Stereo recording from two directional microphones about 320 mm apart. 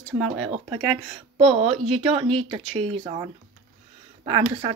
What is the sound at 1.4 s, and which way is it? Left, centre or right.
A woman's voice, centre.